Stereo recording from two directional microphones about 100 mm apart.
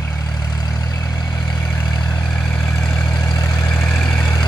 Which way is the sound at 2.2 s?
5° left (ahead or behind).